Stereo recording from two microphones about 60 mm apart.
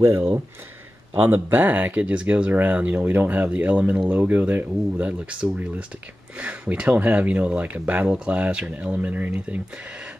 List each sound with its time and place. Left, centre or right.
1.1 s speech: right